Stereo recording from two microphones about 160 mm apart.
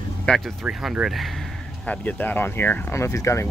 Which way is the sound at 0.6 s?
5° right (ahead or behind).